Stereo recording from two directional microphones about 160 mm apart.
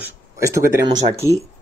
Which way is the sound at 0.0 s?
15° right (ahead or behind).